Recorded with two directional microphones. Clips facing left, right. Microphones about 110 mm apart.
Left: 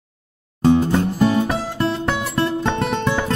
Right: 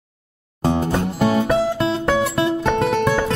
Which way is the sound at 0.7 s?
25° right (ahead or behind).